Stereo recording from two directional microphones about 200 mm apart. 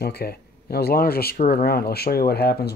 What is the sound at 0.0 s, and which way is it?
Speech, 50° left (ahead or behind).